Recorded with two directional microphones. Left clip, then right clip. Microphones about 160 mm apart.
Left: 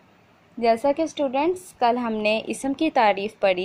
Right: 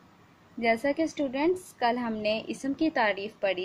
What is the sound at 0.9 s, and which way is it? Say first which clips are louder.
A woman's voice: left 6 dB; 20° left (ahead or behind).